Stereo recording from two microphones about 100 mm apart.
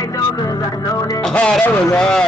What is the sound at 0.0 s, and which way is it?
Music, 35° left (ahead or behind).